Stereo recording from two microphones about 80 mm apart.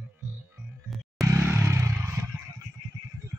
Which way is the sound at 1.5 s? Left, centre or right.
Right.